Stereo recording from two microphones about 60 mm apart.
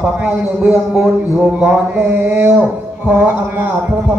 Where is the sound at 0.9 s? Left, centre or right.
Centre.